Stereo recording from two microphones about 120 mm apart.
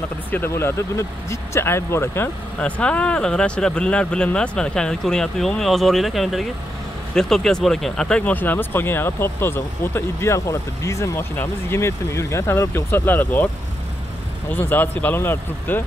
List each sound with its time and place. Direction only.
0.3 s speech: 20° left (ahead or behind)
2.6 s speech: 10° left (ahead or behind)
14.5 s speech: 15° left (ahead or behind)